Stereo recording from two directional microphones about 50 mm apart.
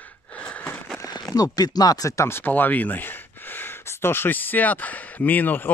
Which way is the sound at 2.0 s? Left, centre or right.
Left.